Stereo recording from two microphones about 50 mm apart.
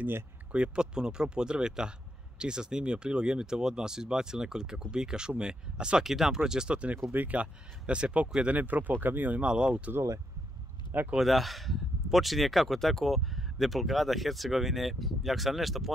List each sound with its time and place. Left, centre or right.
0.5 s speech: right
7.1 s speech: right
7.3 s speech: right
9.5 s speech: right
11.1 s speech: centre